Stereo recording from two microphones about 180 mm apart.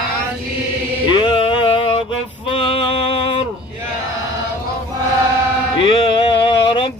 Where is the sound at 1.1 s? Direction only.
30° left (ahead or behind).